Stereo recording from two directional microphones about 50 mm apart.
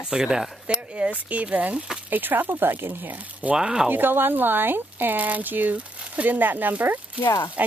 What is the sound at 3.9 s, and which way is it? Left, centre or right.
Speech, right.